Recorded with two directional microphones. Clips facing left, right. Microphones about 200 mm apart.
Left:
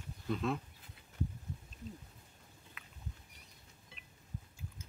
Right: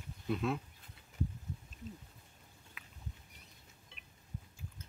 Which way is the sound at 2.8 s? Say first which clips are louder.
Right 1 dB; centre (ahead or behind).